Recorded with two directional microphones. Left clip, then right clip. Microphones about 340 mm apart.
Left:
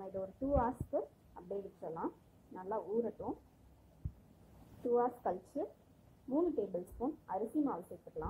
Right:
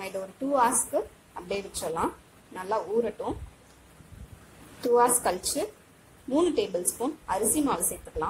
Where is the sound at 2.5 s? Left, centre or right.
Centre.